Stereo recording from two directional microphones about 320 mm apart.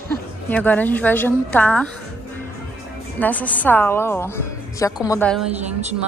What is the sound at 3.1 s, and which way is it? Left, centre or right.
A woman's voice, centre.